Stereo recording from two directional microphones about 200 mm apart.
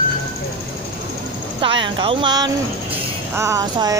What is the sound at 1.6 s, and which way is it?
Speech, 25° right (ahead or behind).